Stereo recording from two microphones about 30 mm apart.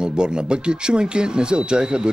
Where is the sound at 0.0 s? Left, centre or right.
Right.